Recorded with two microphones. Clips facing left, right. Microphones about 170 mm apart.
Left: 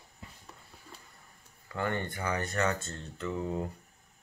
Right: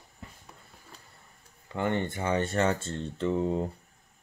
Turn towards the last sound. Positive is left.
turn(degrees=-30)  # may be behind; listen again after turning